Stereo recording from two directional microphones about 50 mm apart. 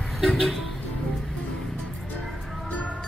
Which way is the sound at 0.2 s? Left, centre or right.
Centre.